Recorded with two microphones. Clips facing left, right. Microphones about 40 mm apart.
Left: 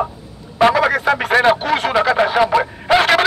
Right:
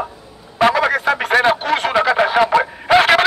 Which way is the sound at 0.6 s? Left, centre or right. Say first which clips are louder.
Left 1 dB; centre.